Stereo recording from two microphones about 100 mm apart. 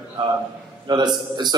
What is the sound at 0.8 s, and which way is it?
Speech, 45° right (ahead or behind).